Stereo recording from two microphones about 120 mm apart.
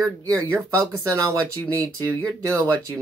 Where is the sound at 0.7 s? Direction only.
25° right (ahead or behind).